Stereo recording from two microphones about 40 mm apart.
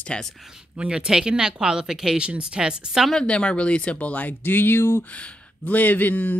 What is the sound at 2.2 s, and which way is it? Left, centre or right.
Speech, right.